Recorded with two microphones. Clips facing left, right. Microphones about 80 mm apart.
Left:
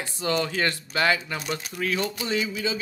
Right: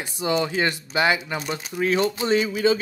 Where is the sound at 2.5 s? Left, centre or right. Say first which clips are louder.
Right 9 dB; right.